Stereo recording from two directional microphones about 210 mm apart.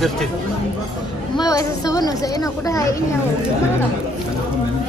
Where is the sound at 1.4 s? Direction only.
15° left (ahead or behind).